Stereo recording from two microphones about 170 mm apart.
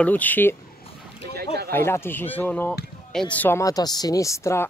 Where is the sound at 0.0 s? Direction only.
10° left (ahead or behind).